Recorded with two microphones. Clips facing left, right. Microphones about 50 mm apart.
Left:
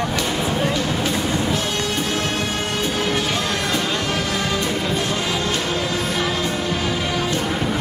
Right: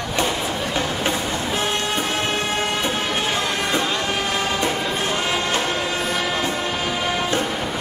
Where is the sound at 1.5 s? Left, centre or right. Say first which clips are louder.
Even; right.